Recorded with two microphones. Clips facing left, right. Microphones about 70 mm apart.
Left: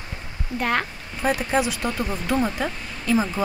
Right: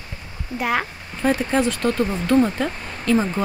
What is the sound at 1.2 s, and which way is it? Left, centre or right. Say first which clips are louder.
Speech: right 2 dB; centre.